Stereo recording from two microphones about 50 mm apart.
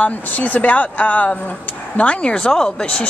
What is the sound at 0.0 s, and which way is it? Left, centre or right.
Speech, left.